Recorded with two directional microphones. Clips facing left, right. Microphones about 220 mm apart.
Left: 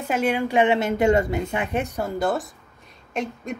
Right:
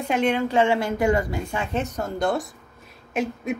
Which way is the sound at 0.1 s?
10° left (ahead or behind).